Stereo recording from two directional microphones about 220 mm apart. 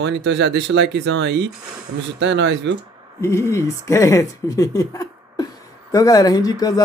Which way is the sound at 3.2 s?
10° left (ahead or behind).